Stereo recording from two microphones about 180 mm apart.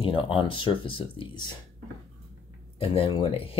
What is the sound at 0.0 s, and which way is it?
Speech, 30° left (ahead or behind).